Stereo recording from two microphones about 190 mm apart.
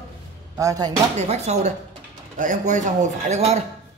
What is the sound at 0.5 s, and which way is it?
Speech, 15° right (ahead or behind).